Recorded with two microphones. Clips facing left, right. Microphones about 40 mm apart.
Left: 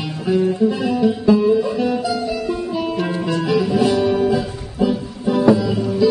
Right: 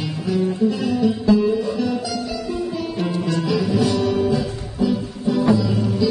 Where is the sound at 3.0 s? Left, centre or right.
Centre.